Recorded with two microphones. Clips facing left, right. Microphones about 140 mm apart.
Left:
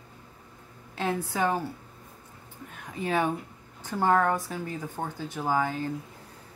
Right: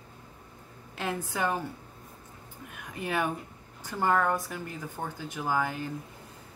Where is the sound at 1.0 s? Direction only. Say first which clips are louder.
Left 4 dB; 15° right (ahead or behind).